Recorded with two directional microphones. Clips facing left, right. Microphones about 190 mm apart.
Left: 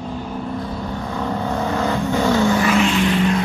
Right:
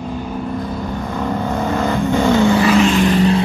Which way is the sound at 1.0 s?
10° right (ahead or behind).